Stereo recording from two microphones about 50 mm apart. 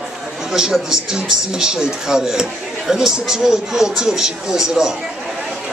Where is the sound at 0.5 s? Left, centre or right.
Centre.